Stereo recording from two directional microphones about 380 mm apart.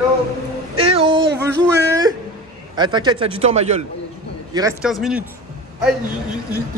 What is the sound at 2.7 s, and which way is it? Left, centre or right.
A man's voice, centre.